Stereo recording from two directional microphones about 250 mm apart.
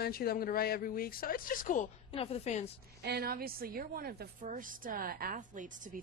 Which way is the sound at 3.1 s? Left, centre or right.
Right.